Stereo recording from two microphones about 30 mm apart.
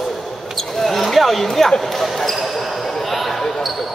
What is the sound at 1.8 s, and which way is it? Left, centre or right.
Speech, centre.